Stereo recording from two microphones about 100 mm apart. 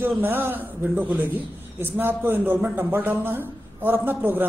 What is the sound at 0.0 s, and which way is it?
A man's voice, 20° right (ahead or behind).